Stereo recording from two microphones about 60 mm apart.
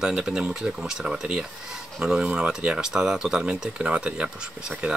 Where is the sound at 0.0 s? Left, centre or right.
Centre.